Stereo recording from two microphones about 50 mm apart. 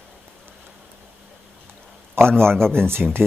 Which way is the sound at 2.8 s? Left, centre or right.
Right.